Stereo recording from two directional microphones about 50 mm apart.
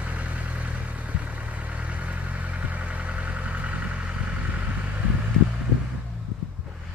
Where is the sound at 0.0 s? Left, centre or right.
Right.